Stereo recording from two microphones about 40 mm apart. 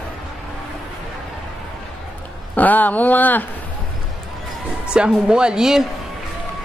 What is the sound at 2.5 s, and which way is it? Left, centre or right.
Speech, left.